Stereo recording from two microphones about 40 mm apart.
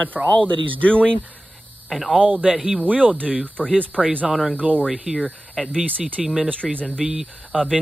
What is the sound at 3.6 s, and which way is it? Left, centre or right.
Speech, left.